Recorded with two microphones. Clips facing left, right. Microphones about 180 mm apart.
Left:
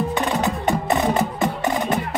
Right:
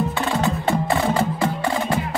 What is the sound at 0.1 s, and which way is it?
Wood block, 20° left (ahead or behind).